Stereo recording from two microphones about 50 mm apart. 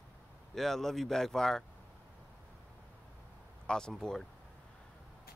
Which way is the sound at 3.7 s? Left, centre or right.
Centre.